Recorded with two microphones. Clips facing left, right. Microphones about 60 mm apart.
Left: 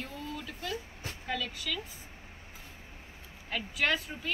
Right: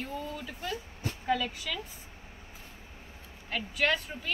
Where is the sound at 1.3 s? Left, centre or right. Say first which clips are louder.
Right 5 dB; right.